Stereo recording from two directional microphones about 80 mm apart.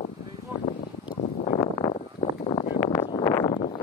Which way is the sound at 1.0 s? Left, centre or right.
Left.